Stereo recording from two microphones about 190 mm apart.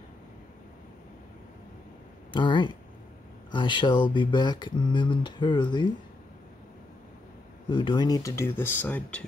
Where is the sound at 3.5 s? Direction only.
25° left (ahead or behind).